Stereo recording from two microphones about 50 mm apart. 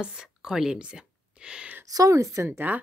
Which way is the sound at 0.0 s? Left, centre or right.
Centre.